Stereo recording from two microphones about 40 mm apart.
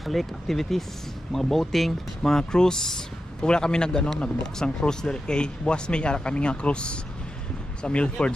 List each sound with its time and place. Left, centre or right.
0.0 s speech: centre; by 8.3 s left